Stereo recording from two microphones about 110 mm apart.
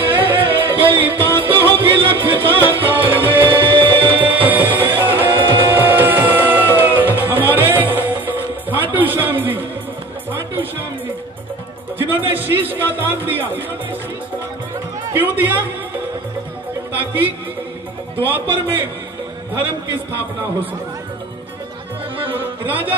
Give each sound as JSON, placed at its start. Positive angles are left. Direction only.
{"t": 0.1, "sound": "music", "side_deg": -15}
{"t": 0.5, "sound": "music", "side_deg": -50}
{"t": 0.9, "sound": "music", "side_deg": -15}
{"t": 3.7, "sound": "music", "side_deg": -50}
{"t": 4.2, "sound": "music", "side_deg": -15}
{"t": 8.9, "sound": "a sound", "side_deg": -15}
{"t": 10.5, "sound": "music", "side_deg": -20}
{"t": 12.0, "sound": "speech", "side_deg": -20}
{"t": 15.1, "sound": "speech", "side_deg": -15}
{"t": 18.2, "sound": "speech", "side_deg": -15}
{"t": 22.4, "sound": "music", "side_deg": -15}